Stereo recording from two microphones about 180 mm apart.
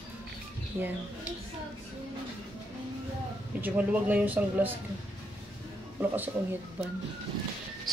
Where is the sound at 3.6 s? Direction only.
10° right (ahead or behind).